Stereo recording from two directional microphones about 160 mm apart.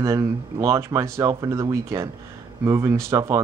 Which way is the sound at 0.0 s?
20° right (ahead or behind).